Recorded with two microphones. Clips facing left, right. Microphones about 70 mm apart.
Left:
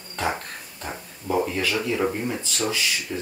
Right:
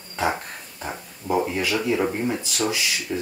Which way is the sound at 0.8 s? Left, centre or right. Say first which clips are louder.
Right 1 dB; centre.